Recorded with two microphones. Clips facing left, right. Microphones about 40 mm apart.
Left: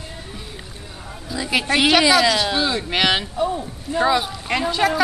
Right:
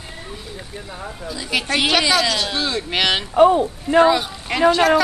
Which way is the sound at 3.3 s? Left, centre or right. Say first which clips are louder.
Right 10 dB; right.